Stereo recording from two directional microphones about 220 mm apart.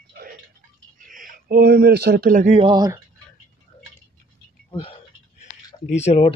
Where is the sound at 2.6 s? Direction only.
20° right (ahead or behind).